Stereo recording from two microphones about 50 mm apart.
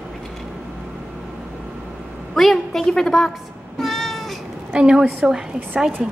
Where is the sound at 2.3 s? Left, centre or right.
Centre.